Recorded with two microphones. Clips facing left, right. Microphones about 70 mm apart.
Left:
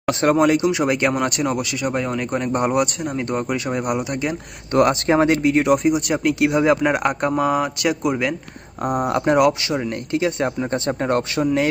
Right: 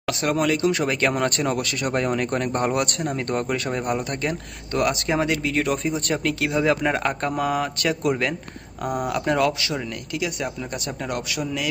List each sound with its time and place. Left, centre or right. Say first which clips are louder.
0.0 s speech: left 6 dB; left
0.7 s speech: left 3 dB; centre
4.7 s speech: left 6 dB; left; by 8.4 s centre
8.8 s speech: left 5 dB; left